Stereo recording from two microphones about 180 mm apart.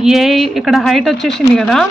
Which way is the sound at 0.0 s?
Centre (ahead or behind).